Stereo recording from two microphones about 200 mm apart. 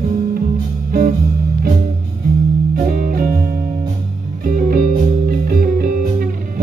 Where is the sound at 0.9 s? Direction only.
45° right (ahead or behind).